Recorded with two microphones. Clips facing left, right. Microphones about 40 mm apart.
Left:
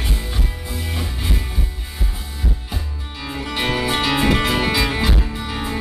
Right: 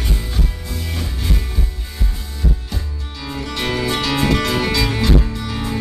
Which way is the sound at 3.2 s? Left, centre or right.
Centre.